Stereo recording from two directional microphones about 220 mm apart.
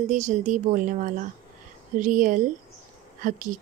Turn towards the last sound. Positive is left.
turn(degrees=-35)  # may be behind; listen again after turning